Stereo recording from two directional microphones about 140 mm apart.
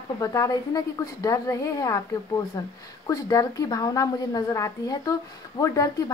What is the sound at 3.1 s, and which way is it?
A woman's voice, 25° left (ahead or behind).